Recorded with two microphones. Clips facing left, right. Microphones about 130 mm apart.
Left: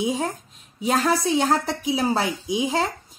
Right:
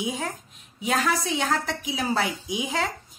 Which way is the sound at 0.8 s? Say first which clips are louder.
Left 4 dB; 35° left (ahead or behind).